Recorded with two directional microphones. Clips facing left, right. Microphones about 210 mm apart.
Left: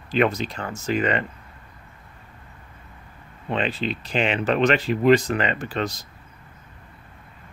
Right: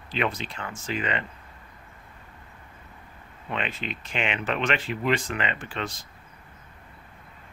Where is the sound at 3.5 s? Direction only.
35° left (ahead or behind).